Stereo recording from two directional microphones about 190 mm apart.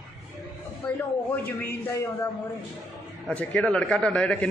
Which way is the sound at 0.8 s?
10° left (ahead or behind).